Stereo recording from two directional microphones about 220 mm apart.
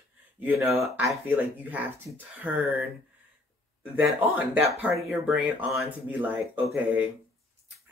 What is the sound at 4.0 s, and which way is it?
Speech, 5° right (ahead or behind).